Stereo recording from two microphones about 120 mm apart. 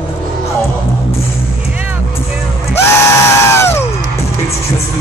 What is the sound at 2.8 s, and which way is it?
Crowd, 20° left (ahead or behind).